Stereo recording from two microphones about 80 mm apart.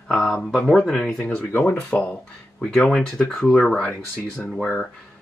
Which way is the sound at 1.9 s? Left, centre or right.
Centre.